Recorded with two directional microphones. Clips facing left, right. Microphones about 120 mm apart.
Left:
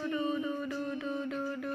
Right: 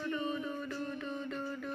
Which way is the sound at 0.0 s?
10° left (ahead or behind).